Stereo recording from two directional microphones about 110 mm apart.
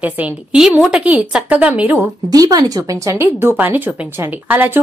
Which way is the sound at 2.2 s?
35° right (ahead or behind).